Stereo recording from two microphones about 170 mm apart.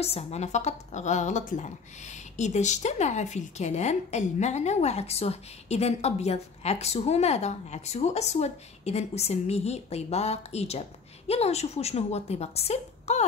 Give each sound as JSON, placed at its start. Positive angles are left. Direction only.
{"t": 0.0, "sound": "a woman's voice", "side_deg": 40}